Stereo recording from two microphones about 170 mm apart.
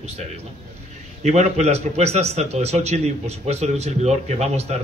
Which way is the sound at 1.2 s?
40° right (ahead or behind).